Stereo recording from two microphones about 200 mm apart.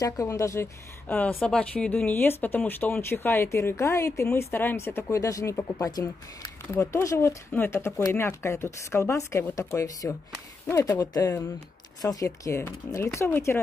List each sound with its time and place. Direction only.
0.0 s speech: 15° left (ahead or behind)